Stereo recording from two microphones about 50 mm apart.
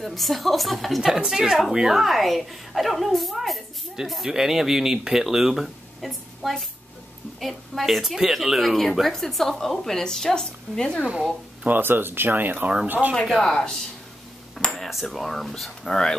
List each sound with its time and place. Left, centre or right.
0.0 s a woman's voice: centre
11.6 s speech: right
13.3 s a woman's voice: centre
14.8 s a woman's voice: centre